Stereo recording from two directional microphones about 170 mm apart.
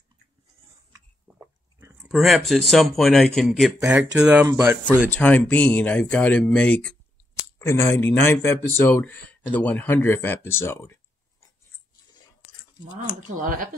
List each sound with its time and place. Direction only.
1.2 s biting: 15° right (ahead or behind)
2.0 s speech: centre (ahead or behind)
5.1 s speech: 10° left (ahead or behind)
13.4 s speech: 50° right (ahead or behind)